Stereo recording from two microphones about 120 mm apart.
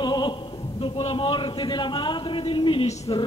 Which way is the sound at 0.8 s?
45° left (ahead or behind).